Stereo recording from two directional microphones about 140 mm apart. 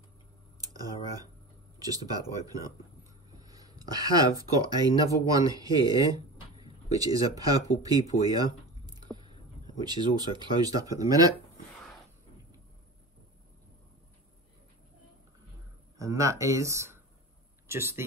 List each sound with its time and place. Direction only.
0.6 s tick: 25° right (ahead or behind)
1.8 s speech: 25° right (ahead or behind)
16.0 s speech: 25° right (ahead or behind)